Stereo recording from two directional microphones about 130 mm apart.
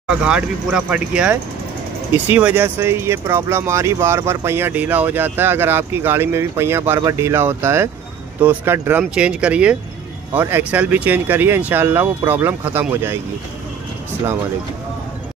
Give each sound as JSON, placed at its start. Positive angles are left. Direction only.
{"t": 0.1, "sound": "speech", "side_deg": -10}